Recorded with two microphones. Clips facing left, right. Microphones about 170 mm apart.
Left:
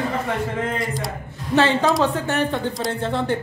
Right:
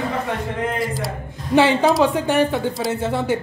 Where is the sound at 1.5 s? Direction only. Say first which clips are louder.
Right 3 dB; 10° right (ahead or behind).